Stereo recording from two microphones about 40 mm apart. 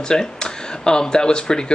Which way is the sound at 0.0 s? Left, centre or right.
Centre.